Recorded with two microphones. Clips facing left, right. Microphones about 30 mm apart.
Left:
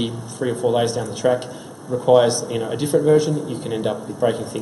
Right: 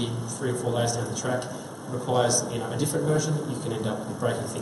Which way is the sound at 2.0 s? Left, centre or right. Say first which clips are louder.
Left 9 dB; left.